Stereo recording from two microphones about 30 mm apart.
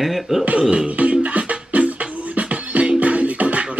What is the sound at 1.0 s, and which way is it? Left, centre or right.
Music, right.